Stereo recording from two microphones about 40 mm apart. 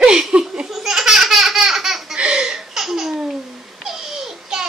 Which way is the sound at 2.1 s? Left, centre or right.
Right.